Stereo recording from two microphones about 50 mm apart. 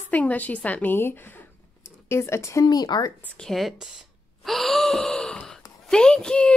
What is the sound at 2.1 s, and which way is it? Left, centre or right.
Speech, left.